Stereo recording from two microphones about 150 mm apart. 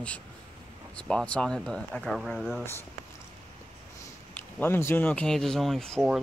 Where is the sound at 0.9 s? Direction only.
5° left (ahead or behind).